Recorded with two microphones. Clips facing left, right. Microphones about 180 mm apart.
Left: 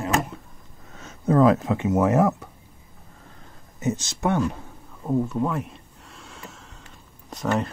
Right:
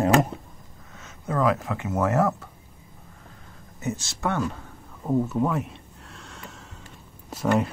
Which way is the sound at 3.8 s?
20° left (ahead or behind).